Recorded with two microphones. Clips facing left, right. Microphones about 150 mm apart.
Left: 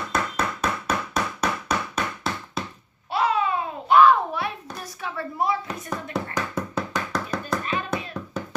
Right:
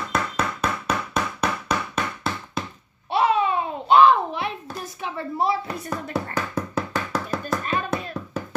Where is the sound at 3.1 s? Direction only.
25° right (ahead or behind).